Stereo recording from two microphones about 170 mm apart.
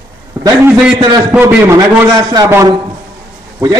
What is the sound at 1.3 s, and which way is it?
A man's voice, 10° right (ahead or behind).